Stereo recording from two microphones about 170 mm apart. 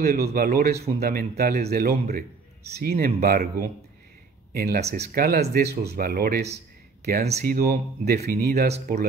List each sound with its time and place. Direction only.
0.0 s a man's voice: 65° right (ahead or behind)